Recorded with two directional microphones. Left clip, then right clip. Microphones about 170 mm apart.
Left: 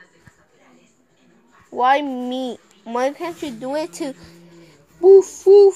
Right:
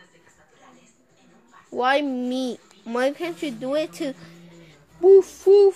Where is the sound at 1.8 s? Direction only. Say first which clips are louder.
Left 4 dB; 20° right (ahead or behind).